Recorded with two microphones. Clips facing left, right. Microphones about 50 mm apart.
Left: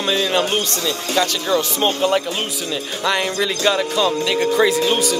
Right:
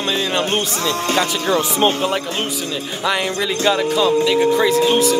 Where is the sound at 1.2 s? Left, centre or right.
Centre.